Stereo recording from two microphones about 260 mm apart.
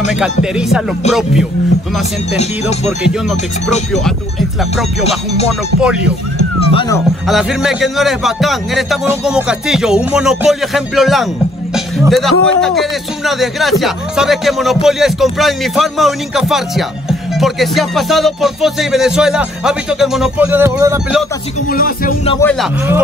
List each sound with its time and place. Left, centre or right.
0.1 s speech: centre
3.1 s speech: centre
6.7 s speech: centre
7.2 s speech: centre
21.6 s speech: left
22.4 s speech: centre